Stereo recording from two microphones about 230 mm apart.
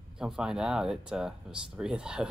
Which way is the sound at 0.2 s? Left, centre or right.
Centre.